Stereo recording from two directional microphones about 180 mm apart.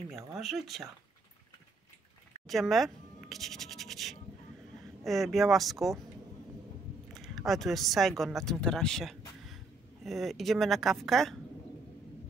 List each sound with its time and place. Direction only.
0.4 s speech: centre (ahead or behind)
2.4 s speech: centre (ahead or behind)
7.2 s speech: centre (ahead or behind)